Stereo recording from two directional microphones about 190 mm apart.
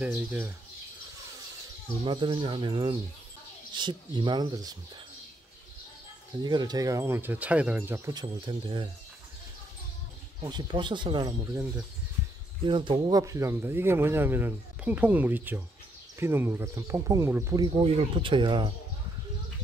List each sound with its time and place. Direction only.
0.0 s speech: 10° right (ahead or behind)
2.0 s speech: 25° right (ahead or behind)
6.4 s speech: 20° right (ahead or behind)
10.4 s speech: 20° right (ahead or behind)
12.6 s speech: 25° right (ahead or behind)
17.6 s speech: 30° right (ahead or behind)